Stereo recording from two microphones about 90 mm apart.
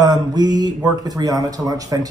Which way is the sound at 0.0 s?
45° right (ahead or behind).